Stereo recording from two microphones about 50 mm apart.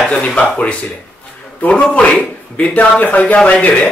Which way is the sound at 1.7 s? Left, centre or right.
Left.